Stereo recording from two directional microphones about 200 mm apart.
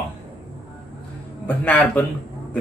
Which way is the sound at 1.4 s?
5° left (ahead or behind).